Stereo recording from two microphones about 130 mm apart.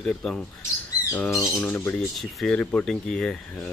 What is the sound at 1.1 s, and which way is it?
Speech, 20° left (ahead or behind).